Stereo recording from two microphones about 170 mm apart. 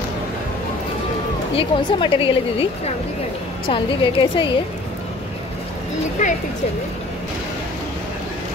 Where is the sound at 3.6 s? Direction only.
30° left (ahead or behind).